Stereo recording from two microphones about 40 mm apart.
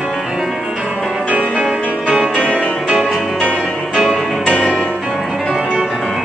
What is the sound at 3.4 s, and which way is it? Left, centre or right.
Music, right.